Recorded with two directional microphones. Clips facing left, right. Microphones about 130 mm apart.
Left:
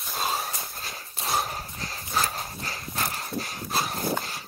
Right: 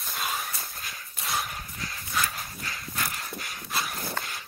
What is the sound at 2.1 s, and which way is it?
Horse, 35° left (ahead or behind).